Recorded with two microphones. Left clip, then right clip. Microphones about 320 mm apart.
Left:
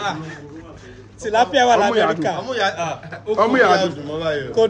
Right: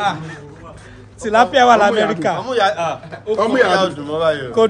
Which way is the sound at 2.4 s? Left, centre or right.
Centre.